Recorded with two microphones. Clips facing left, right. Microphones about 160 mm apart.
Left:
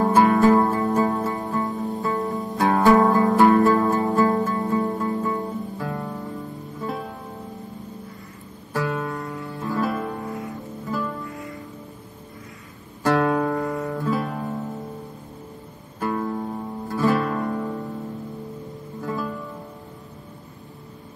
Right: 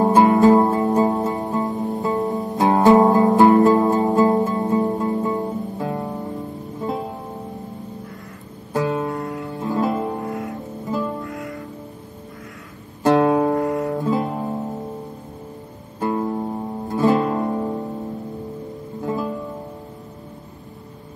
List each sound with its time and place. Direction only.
0.0 s music: 20° right (ahead or behind)
8.7 s music: 20° right (ahead or behind)
11.2 s music: 75° right (ahead or behind)
13.0 s guitar: 20° right (ahead or behind)
13.7 s music: 20° right (ahead or behind)
16.0 s music: 20° right (ahead or behind)
19.0 s music: 20° right (ahead or behind)